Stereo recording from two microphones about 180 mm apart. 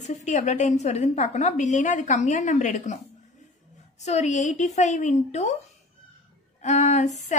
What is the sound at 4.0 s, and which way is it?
A woman's voice, 40° left (ahead or behind).